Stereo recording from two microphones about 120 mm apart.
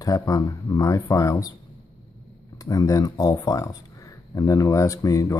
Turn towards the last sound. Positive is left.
turn(degrees=25)  # may be behind; listen again after turning